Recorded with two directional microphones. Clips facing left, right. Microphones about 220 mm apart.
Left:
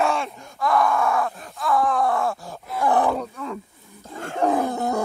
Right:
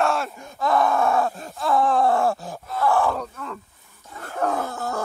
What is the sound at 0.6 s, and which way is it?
Groan, 25° right (ahead or behind).